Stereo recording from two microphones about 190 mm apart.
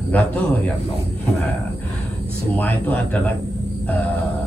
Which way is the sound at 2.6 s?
10° left (ahead or behind).